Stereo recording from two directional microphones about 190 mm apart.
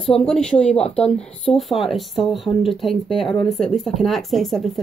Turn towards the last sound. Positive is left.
turn(degrees=0)  # may be behind; listen again after turning